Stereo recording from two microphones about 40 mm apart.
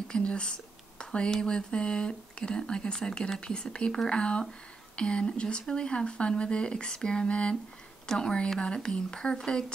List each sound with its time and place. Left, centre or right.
0.2 s speech: left